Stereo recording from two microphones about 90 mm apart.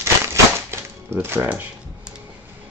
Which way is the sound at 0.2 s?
30° right (ahead or behind).